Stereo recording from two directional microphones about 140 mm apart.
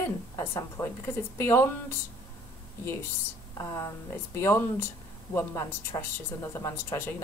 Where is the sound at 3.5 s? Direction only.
20° left (ahead or behind).